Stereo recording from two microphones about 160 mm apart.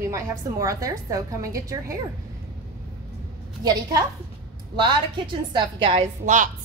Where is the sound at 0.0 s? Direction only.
20° right (ahead or behind).